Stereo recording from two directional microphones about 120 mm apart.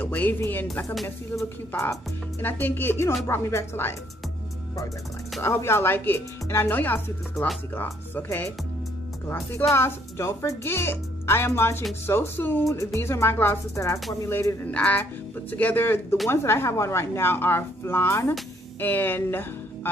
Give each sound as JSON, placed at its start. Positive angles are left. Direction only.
{"t": 0.0, "sound": "speech", "side_deg": 15}
{"t": 5.4, "sound": "speech", "side_deg": 20}